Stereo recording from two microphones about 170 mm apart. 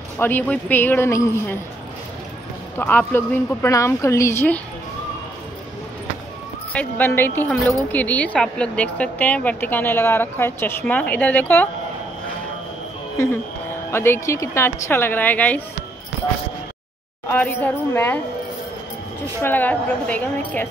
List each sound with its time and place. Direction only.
0.2 s a woman's voice: 10° left (ahead or behind)
2.8 s a woman's voice: 10° left (ahead or behind)
6.7 s a woman's voice: 10° left (ahead or behind)
13.2 s a woman's voice: 15° left (ahead or behind)
17.3 s a woman's voice: 10° left (ahead or behind)
19.4 s a woman's voice: 10° left (ahead or behind)